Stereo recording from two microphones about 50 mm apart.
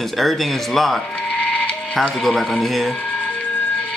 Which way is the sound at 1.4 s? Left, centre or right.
Left.